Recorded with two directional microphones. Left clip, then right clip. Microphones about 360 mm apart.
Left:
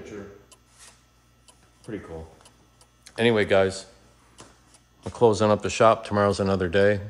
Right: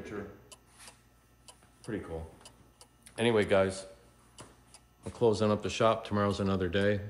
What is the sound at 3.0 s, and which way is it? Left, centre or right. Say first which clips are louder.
Speech: left 6 dB; left.